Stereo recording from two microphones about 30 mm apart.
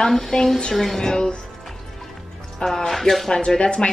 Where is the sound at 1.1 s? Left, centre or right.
Left.